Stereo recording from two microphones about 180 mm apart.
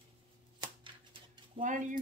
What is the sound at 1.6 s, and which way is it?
Speech, 45° right (ahead or behind).